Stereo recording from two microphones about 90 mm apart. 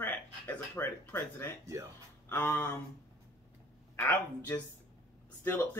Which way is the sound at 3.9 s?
25° left (ahead or behind).